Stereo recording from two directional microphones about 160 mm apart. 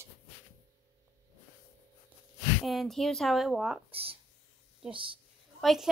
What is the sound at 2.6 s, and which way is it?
A woman's voice, centre (ahead or behind).